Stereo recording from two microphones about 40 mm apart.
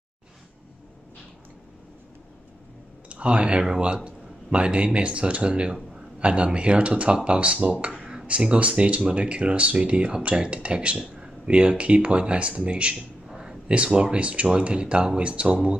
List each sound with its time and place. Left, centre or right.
3.1 s a man's voice: right
13.3 s a sound: centre
13.9 s speech: right